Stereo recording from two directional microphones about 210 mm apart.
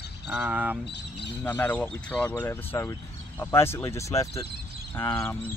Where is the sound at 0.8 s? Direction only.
55° left (ahead or behind).